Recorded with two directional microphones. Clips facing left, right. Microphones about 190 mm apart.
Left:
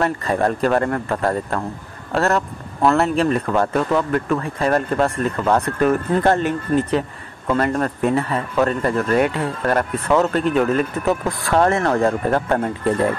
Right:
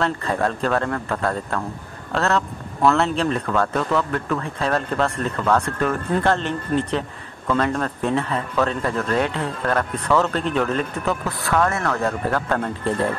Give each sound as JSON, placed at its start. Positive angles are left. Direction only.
{"t": 0.0, "sound": "speech", "side_deg": 15}
{"t": 11.1, "sound": "speech", "side_deg": 25}